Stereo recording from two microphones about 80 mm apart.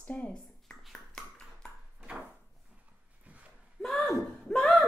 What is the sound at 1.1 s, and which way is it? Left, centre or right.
Ping, centre.